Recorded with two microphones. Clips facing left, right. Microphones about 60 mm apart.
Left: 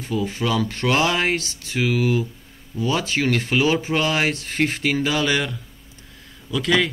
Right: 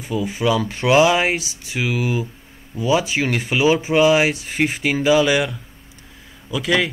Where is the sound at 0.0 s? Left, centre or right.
Centre.